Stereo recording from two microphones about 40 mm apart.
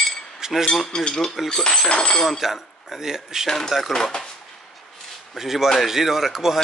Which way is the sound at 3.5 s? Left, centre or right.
Centre.